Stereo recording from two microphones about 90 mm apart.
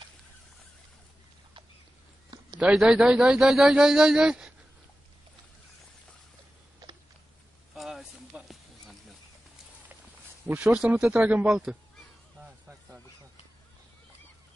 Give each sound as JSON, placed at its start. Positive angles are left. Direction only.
{"t": 2.6, "sound": "a man's voice", "side_deg": -5}
{"t": 7.7, "sound": "a sound", "side_deg": 0}
{"t": 10.7, "sound": "speech", "side_deg": -10}
{"t": 11.1, "sound": "speech", "side_deg": -20}
{"t": 11.4, "sound": "a man's voice", "side_deg": -5}